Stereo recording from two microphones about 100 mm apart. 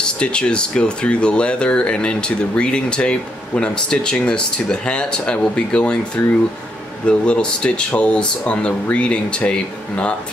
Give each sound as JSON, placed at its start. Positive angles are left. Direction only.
{"t": 0.0, "sound": "speech", "side_deg": 10}